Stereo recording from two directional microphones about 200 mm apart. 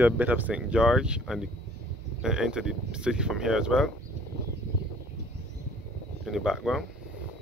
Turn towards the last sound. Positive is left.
turn(degrees=0)  # may be behind; listen again after turning